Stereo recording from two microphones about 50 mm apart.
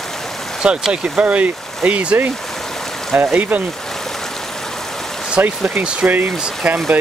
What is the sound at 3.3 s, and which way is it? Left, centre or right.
Speech, right.